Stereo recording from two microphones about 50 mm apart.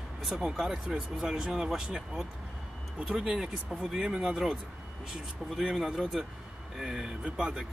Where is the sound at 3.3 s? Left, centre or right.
Centre.